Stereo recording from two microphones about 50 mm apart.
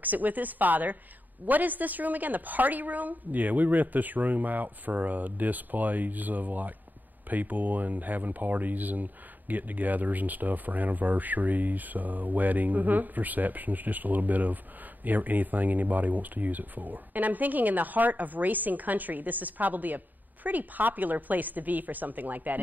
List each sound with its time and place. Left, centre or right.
0.0 s speech: right